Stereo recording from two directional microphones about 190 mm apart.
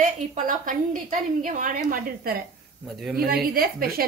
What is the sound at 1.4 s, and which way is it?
A woman's voice, 45° right (ahead or behind).